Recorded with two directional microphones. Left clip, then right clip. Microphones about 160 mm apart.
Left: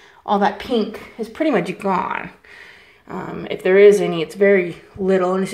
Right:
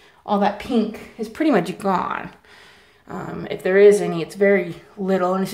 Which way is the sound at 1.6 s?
15° right (ahead or behind).